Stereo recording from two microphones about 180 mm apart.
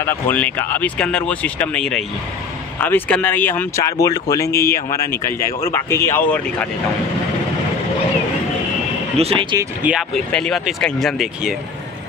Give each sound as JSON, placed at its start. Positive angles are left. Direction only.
{"t": 0.0, "sound": "speech", "side_deg": 10}
{"t": 9.2, "sound": "speech", "side_deg": -30}
{"t": 9.8, "sound": "speech", "side_deg": 0}